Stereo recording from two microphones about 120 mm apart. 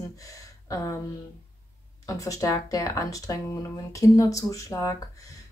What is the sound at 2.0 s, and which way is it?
Speech, 25° left (ahead or behind).